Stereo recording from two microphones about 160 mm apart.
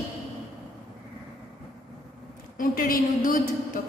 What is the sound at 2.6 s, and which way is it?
Speech, 60° left (ahead or behind).